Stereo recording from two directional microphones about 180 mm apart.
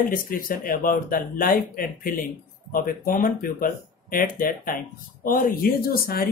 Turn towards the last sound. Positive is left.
turn(degrees=55)  # may be behind; listen again after turning